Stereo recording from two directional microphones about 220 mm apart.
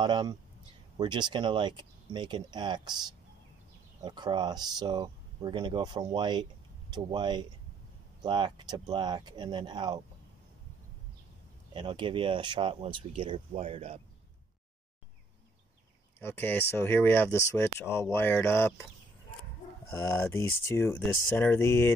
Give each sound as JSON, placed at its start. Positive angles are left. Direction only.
{"t": 0.0, "sound": "speech", "side_deg": -20}
{"t": 11.7, "sound": "speech", "side_deg": -20}
{"t": 16.2, "sound": "speech", "side_deg": 10}
{"t": 20.1, "sound": "speech", "side_deg": 10}